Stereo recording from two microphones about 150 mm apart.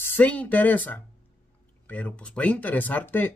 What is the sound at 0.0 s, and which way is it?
A man's voice, 10° left (ahead or behind).